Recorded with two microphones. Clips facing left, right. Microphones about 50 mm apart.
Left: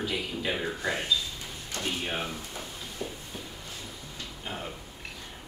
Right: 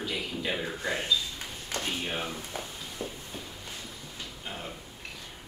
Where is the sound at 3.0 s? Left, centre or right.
Centre.